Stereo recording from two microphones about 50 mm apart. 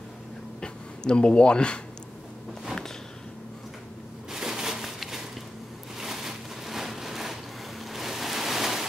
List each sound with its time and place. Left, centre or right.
0.6 s speech: centre
4.3 s a sound: centre
7.8 s rain: centre